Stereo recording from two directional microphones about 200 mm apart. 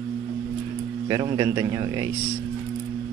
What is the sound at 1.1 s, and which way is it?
A man's voice, 20° right (ahead or behind).